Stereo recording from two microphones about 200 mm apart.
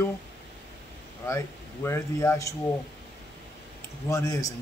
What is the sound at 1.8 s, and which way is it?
Speech, 15° left (ahead or behind).